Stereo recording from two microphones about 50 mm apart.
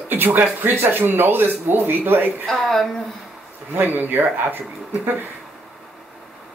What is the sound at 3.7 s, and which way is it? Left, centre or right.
Speech, right.